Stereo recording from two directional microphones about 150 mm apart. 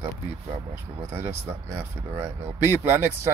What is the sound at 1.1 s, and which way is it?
Speech, 15° right (ahead or behind).